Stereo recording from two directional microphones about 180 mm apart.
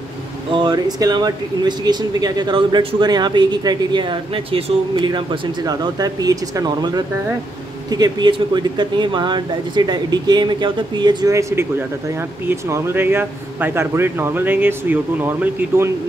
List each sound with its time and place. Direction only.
0.5 s speech: 25° right (ahead or behind)